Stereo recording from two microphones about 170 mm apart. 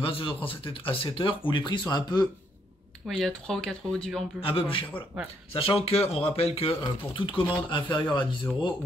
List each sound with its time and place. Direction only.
0.0 s speech: 30° left (ahead or behind)
3.1 s speech: centre (ahead or behind)
4.4 s speech: 30° left (ahead or behind)